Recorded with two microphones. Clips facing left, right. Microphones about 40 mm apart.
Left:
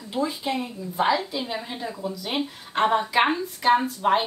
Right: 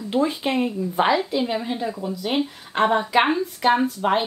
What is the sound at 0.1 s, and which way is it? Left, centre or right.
Speech, right.